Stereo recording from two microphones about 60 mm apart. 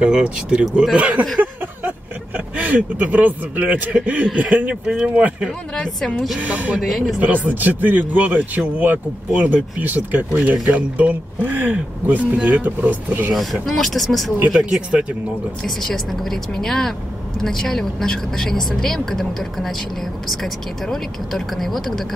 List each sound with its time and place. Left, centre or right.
0.0 s speech: centre
5.8 s a woman's voice: centre
6.4 s speech: right
6.8 s speech: centre
7.2 s speech: right
13.3 s speech: centre
14.5 s speech: centre
15.6 s a woman's voice: centre